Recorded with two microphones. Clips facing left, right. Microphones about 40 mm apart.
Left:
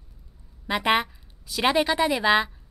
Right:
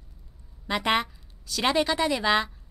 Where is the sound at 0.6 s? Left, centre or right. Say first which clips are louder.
Left 2 dB; centre.